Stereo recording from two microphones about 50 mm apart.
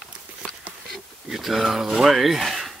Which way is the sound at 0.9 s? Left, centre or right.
Centre.